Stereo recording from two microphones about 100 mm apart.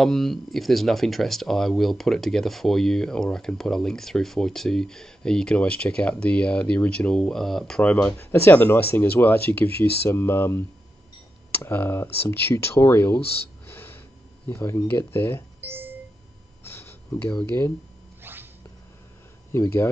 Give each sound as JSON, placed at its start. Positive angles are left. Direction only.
{"t": 0.0, "sound": "speech", "side_deg": 0}
{"t": 11.6, "sound": "speech", "side_deg": 25}
{"t": 13.7, "sound": "a sound", "side_deg": 20}
{"t": 14.5, "sound": "speech", "side_deg": 25}
{"t": 15.6, "sound": "a sound", "side_deg": -20}
{"t": 16.6, "sound": "a sound", "side_deg": 25}
{"t": 17.5, "sound": "speech", "side_deg": 20}
{"t": 18.2, "sound": "cat", "side_deg": -20}
{"t": 19.5, "sound": "speech", "side_deg": 25}